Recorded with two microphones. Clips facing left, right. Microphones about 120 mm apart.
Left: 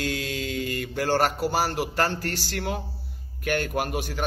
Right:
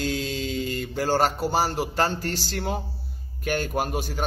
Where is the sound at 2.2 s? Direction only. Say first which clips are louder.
Right 1 dB; 75° left (ahead or behind).